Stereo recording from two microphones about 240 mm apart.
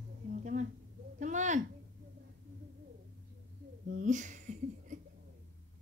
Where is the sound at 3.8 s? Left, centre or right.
Right.